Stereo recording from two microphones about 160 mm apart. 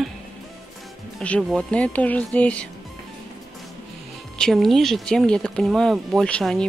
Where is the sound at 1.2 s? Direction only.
5° left (ahead or behind).